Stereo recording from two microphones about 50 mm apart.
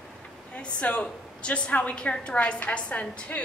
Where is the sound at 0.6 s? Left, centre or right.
Left.